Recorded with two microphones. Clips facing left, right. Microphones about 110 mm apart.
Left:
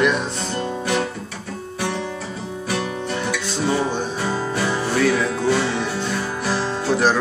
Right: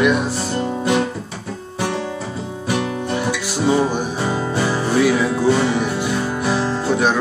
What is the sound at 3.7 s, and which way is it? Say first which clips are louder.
Music: right 5 dB; 15° right (ahead or behind).